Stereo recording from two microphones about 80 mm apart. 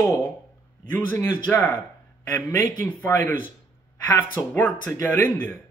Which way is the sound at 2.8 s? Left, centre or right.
Left.